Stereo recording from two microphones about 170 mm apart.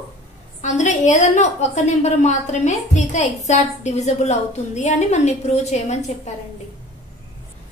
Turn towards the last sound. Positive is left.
turn(degrees=40)  # may be behind; listen again after turning